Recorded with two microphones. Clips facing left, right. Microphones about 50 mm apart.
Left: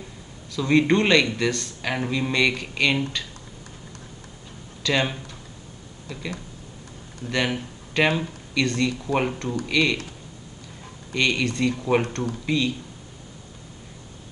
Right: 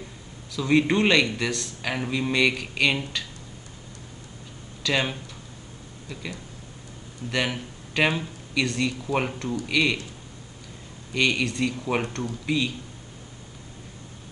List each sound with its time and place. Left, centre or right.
0.6 s a man's voice: centre
4.8 s speech: centre
7.2 s speech: centre
9.0 s a man's voice: centre
11.1 s a man's voice: centre